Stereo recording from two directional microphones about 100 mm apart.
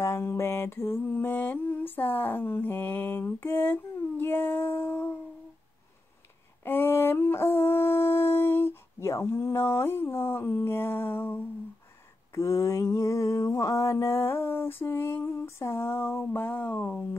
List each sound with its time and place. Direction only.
0.0 s mantra: 25° left (ahead or behind)
6.6 s howl: 20° left (ahead or behind)
12.4 s mantra: 30° left (ahead or behind); by 17.0 s 15° left (ahead or behind)